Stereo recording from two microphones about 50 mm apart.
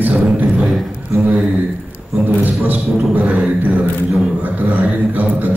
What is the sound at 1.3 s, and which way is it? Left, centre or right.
Speech, centre.